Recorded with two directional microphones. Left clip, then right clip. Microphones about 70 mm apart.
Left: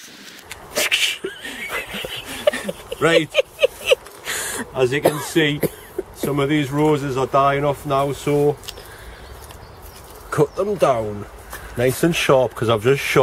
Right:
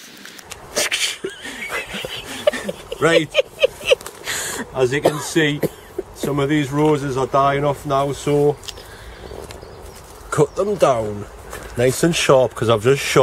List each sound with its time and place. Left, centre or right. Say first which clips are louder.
0.7 s a sound: left 2 dB; centre
5.2 s speech: even; centre
10.3 s speech: right 1 dB; right